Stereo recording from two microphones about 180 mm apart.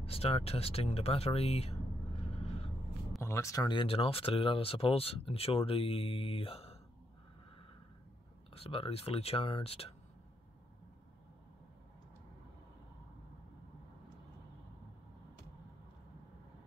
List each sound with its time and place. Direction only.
0.0 s speech: 35° left (ahead or behind)
2.3 s vehicle: 35° left (ahead or behind)
3.2 s speech: 15° left (ahead or behind); by 6.8 s 30° left (ahead or behind)
8.5 s speech: 30° left (ahead or behind)